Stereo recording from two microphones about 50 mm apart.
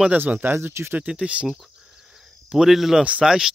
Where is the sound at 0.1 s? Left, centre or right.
Right.